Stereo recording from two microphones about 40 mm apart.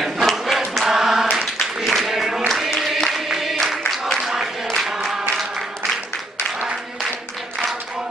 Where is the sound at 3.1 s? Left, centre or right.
Centre.